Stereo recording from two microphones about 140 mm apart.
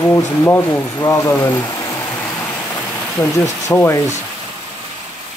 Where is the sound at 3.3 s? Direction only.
20° left (ahead or behind).